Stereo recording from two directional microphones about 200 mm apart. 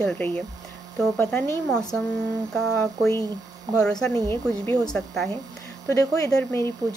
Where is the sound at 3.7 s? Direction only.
5° left (ahead or behind).